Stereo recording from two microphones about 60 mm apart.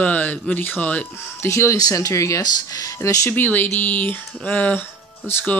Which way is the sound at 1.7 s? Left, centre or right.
Left.